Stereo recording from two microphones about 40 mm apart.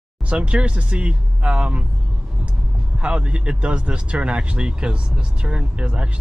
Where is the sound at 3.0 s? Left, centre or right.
Right.